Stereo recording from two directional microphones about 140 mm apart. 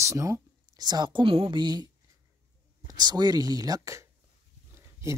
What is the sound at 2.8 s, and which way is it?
Speech, 30° right (ahead or behind).